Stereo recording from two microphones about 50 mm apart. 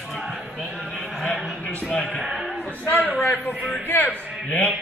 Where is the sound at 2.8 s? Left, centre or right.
Left.